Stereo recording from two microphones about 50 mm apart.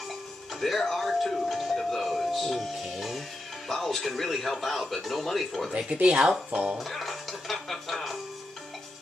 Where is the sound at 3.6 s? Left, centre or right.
Centre.